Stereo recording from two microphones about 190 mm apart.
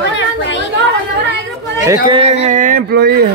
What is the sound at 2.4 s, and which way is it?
Speech, 45° right (ahead or behind).